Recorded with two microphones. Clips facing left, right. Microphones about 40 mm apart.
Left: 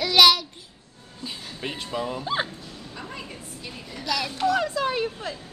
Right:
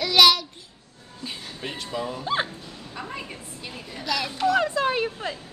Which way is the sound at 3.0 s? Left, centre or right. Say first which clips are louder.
Right 3 dB; centre.